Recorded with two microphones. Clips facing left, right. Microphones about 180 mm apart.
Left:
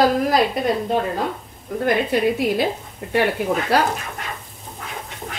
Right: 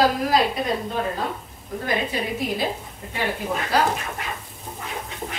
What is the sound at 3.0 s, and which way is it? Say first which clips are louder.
Speech: left 11 dB; 70° left (ahead or behind).